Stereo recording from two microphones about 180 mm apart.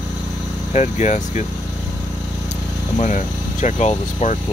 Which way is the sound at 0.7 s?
40° left (ahead or behind).